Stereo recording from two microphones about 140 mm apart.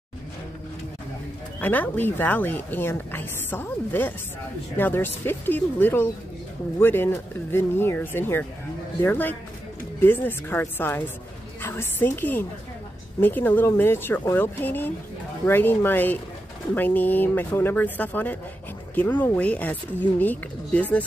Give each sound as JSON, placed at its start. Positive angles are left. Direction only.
{"t": 1.6, "sound": "speech", "side_deg": 10}